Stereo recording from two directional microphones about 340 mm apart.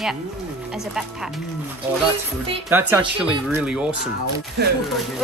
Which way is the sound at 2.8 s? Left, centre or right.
Centre.